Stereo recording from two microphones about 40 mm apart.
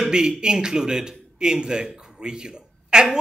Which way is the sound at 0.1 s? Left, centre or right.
Centre.